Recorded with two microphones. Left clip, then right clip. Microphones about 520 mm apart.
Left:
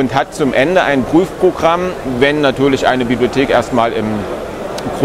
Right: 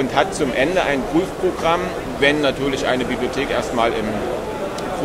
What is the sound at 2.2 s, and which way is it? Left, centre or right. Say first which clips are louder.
Speech: left 5 dB; left.